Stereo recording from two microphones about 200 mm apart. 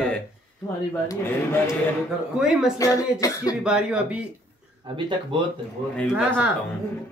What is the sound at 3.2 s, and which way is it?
Speech, 15° left (ahead or behind).